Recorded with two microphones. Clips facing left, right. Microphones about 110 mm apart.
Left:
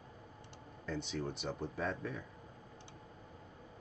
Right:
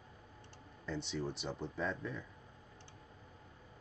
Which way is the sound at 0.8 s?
Centre (ahead or behind).